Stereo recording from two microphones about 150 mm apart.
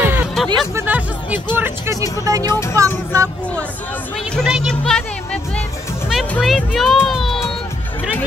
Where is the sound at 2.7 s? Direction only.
20° right (ahead or behind).